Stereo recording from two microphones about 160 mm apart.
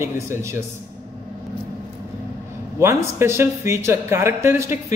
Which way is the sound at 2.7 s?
15° right (ahead or behind).